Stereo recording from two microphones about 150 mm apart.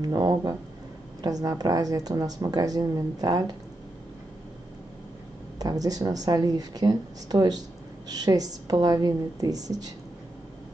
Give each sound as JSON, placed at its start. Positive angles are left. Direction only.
{"t": 0.0, "sound": "speech", "side_deg": -25}
{"t": 5.6, "sound": "speech", "side_deg": -25}